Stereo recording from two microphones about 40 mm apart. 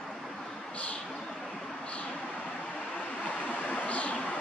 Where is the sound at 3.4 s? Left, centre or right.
Left.